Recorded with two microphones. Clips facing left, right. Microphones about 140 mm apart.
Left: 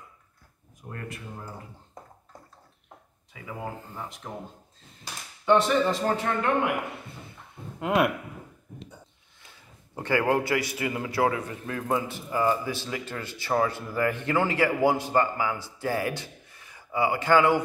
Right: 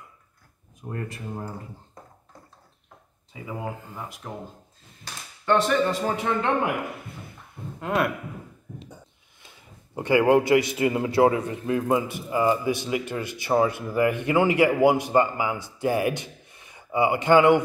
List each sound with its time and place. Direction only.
0.7 s speech: 25° right (ahead or behind)
3.3 s speech: 25° right (ahead or behind)
3.9 s speech: 5° right (ahead or behind)
5.4 s speech: centre (ahead or behind)
7.8 s speech: 15° left (ahead or behind)
9.9 s a man's voice: 15° right (ahead or behind)